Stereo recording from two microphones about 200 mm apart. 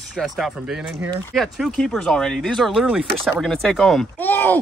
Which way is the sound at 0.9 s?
15° right (ahead or behind).